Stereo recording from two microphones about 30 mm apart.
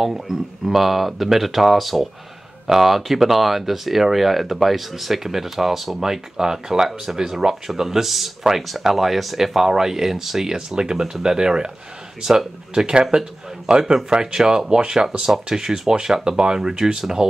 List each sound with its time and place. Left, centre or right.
0.0 s speech: centre
10.5 s a man's voice: right